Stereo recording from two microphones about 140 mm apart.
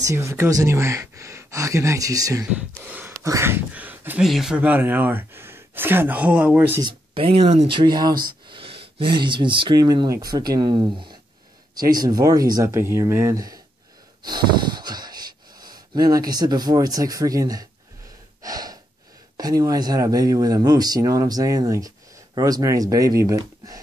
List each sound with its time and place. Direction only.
0.0 s speech: 20° right (ahead or behind)
2.8 s speech: 10° right (ahead or behind)
7.2 s speech: 45° right (ahead or behind)
7.8 s speech: 30° right (ahead or behind)
18.4 s gasp: 25° right (ahead or behind)
19.3 s speech: 25° right (ahead or behind)